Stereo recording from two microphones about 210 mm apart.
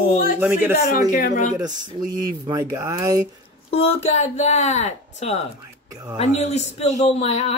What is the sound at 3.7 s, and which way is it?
A man's voice, 30° left (ahead or behind).